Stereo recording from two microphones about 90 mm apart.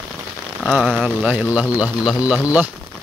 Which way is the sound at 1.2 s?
15° right (ahead or behind).